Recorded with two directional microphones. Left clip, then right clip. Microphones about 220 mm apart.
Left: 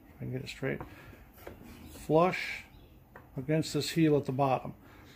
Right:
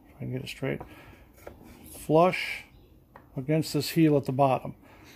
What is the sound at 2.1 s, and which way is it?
Speech, 35° right (ahead or behind).